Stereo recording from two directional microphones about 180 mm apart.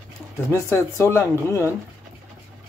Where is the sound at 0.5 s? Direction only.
15° left (ahead or behind).